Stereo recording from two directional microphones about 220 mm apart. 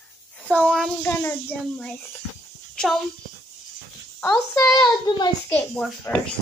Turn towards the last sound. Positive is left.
turn(degrees=5)  # may be behind; listen again after turning